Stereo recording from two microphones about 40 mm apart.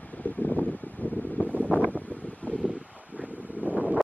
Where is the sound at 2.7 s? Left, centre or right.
Right.